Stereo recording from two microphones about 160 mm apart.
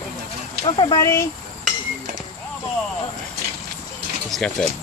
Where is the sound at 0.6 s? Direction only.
35° left (ahead or behind).